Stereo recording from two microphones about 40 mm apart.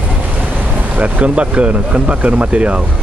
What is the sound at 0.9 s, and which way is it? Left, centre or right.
Vehicle, right.